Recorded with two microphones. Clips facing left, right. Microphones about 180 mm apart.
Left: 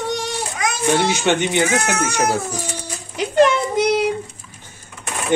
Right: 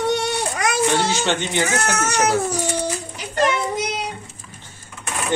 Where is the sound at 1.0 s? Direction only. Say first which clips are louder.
Left 3 dB; 15° left (ahead or behind).